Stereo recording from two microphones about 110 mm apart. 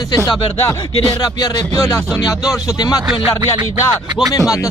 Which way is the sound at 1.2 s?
35° left (ahead or behind).